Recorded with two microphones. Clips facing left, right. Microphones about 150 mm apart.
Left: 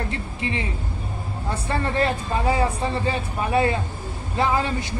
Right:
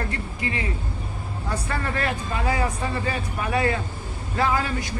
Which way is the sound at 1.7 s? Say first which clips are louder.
Left 6 dB; 25° left (ahead or behind).